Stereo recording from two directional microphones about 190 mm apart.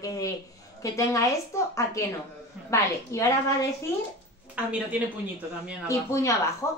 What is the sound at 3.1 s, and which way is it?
Speech, 15° left (ahead or behind).